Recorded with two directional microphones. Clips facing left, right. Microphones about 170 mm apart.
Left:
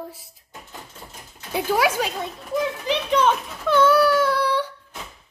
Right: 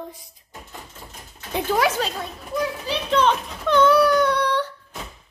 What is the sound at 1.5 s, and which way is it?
Speech, 10° left (ahead or behind).